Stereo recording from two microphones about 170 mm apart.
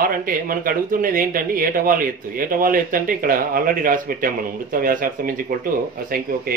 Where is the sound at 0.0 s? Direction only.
55° right (ahead or behind).